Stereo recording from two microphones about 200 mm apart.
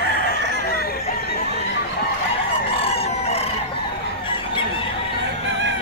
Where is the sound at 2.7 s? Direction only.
30° left (ahead or behind).